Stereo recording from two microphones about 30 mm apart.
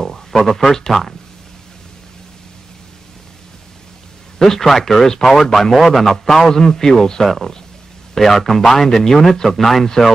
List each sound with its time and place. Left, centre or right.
0.0 s speech: centre
4.4 s a man's voice: centre
7.2 s a man's voice: centre